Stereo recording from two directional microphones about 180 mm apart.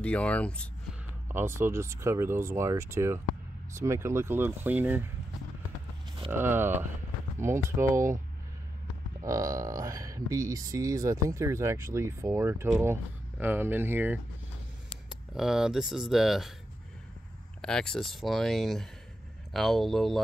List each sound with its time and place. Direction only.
0.0 s speech: 5° left (ahead or behind)
1.3 s speech: 15° right (ahead or behind)
6.3 s speech: 10° right (ahead or behind)
9.2 s speech: 15° right (ahead or behind); by 16.5 s centre (ahead or behind)
17.6 s speech: 5° left (ahead or behind)